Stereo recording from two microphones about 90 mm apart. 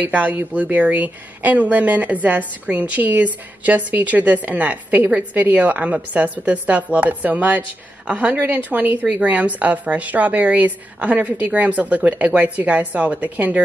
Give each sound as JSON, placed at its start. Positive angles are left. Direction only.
{"t": 0.0, "sound": "a woman's voice", "side_deg": -15}